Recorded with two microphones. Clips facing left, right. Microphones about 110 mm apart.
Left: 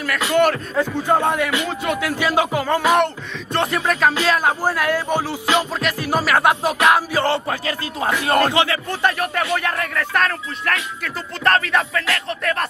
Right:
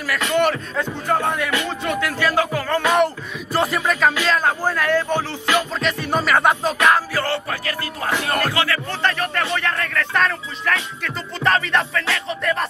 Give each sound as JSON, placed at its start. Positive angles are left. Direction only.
{"t": 0.1, "sound": "music", "side_deg": 0}
{"t": 1.0, "sound": "speech", "side_deg": 20}
{"t": 2.8, "sound": "music", "side_deg": 0}
{"t": 4.3, "sound": "speech", "side_deg": 10}
{"t": 5.6, "sound": "music", "side_deg": 5}
{"t": 7.2, "sound": "music", "side_deg": 20}
{"t": 9.2, "sound": "speech", "side_deg": 10}
{"t": 11.4, "sound": "music", "side_deg": 0}